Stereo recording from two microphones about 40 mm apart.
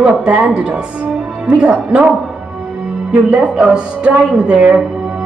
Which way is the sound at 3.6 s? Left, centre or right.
Right.